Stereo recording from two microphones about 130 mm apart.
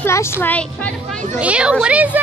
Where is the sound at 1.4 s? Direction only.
10° right (ahead or behind).